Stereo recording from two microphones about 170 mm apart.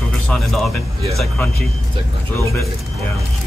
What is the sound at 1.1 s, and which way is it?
Speech, centre (ahead or behind).